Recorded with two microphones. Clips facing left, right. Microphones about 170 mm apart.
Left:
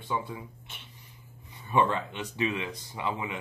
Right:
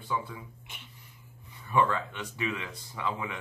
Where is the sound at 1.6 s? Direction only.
20° left (ahead or behind).